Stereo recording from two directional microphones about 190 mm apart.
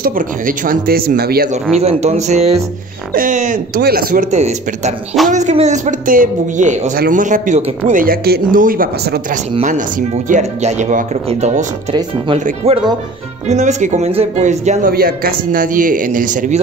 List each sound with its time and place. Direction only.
0.0 s speech: 45° right (ahead or behind)
1.8 s a man's voice: 35° right (ahead or behind)
8.0 s a man's voice: 55° right (ahead or behind)